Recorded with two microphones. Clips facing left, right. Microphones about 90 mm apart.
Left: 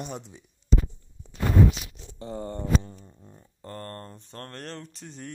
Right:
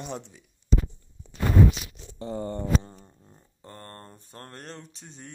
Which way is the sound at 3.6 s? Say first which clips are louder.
Left 5 dB; 10° right (ahead or behind).